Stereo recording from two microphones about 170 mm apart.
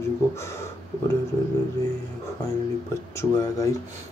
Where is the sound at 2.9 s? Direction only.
15° left (ahead or behind).